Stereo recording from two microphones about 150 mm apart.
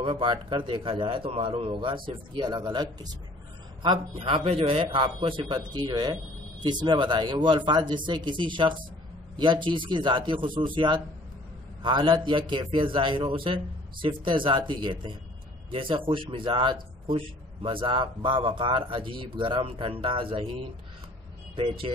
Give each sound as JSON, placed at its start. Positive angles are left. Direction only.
{"t": 0.0, "sound": "a man's voice", "side_deg": -35}